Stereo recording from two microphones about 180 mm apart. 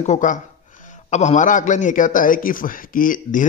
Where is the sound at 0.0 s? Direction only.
40° left (ahead or behind).